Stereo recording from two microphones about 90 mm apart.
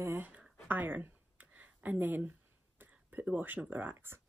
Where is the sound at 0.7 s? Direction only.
20° right (ahead or behind).